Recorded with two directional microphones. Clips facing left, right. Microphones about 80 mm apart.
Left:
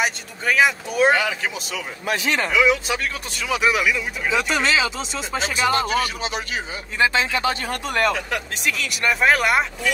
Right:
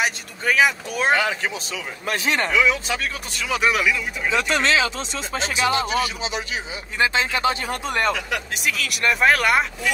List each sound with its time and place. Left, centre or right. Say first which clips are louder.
0.0 s speech: even; centre
2.3 s speech: left 1 dB; centre
5.8 s speech: left 1 dB; left
7.2 s speech: even; right
8.6 s speech: even; centre